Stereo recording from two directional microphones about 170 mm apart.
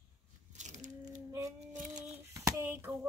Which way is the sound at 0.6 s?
45° right (ahead or behind).